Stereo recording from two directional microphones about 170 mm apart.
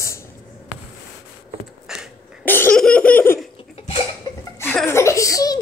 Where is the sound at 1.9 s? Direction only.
5° right (ahead or behind).